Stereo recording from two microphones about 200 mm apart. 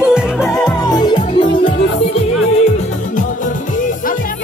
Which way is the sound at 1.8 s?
65° left (ahead or behind).